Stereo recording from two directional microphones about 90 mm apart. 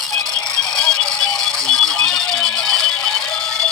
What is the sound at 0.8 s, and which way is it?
Music, 10° left (ahead or behind).